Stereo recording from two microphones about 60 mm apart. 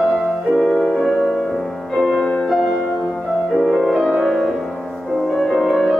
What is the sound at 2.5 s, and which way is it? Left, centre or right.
Music, centre.